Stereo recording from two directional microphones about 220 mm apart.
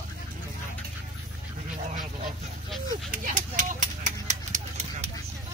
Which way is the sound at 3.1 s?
35° right (ahead or behind).